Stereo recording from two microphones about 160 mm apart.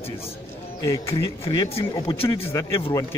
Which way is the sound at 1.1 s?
35° left (ahead or behind).